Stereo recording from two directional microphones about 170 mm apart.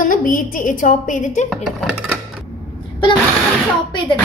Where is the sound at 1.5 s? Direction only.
Centre (ahead or behind).